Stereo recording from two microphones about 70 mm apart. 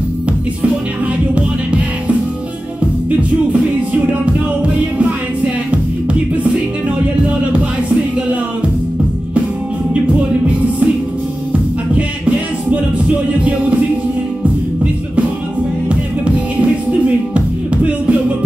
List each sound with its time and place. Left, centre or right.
1.3 s music: centre
3.9 s music: right
10.4 s music: right
16.6 s music: centre